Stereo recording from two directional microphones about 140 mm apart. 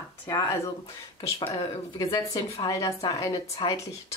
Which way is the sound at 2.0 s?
25° left (ahead or behind).